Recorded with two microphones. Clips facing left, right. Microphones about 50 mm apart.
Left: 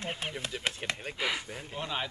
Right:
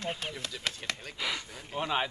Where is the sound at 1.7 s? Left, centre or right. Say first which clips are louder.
Right 5 dB; centre.